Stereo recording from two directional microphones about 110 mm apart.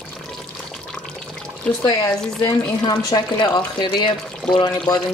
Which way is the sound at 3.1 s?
40° left (ahead or behind).